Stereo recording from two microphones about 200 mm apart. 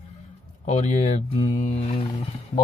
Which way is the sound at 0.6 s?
35° left (ahead or behind).